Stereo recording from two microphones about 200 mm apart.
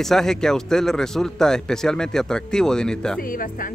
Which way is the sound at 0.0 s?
Centre (ahead or behind).